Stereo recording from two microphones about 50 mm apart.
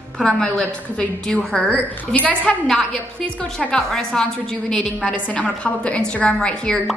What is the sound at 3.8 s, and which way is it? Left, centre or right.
A woman's voice, centre.